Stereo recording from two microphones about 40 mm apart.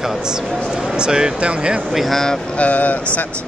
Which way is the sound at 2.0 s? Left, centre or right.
Centre.